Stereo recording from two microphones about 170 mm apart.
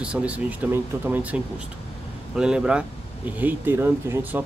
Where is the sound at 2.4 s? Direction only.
5° right (ahead or behind).